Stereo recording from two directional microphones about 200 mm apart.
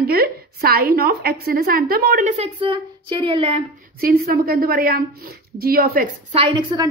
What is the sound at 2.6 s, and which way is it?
A woman's voice, 25° right (ahead or behind).